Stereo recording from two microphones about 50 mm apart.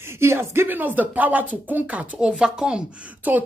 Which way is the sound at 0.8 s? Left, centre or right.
Right.